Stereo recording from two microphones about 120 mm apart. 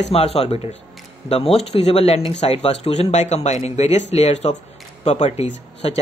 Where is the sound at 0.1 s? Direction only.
55° left (ahead or behind).